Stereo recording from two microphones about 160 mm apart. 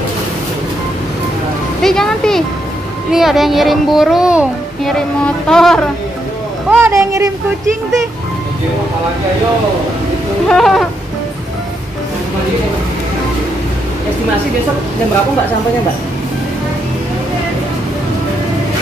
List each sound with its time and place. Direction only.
1.8 s a child's voice: 5° left (ahead or behind)
6.7 s speech: 15° right (ahead or behind)
10.5 s a child's voice: centre (ahead or behind)